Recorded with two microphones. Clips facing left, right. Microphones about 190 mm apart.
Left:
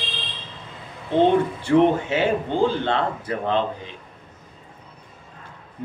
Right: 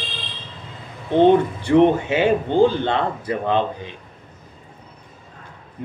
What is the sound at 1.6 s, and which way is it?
Speech, 15° right (ahead or behind).